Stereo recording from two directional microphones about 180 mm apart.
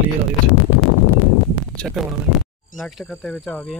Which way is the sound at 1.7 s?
Centre (ahead or behind).